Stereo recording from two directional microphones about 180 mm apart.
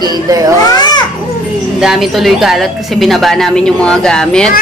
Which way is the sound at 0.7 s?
25° left (ahead or behind).